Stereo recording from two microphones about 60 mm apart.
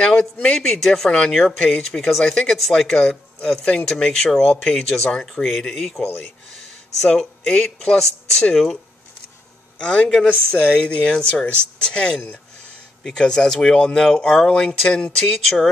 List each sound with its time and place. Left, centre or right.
0.0 s speech: centre
0.7 s speech: centre
3.6 s speech: centre
9.8 s speech: centre